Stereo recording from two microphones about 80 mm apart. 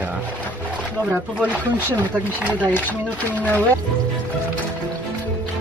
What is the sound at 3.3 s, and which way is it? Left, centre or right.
Speech, centre.